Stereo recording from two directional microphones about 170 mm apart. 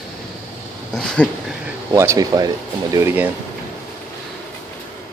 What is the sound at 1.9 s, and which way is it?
Speech, 15° right (ahead or behind).